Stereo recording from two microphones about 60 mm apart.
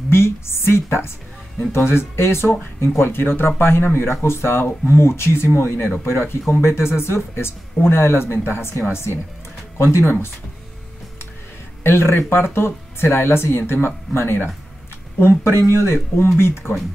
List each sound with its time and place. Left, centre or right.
0.1 s a sound: left
1.7 s speech: left
11.8 s speech: left